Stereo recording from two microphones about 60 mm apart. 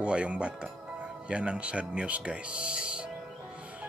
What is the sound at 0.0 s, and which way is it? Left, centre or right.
Speech, centre.